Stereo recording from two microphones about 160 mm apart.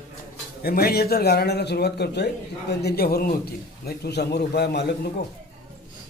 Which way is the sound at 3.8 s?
90° left.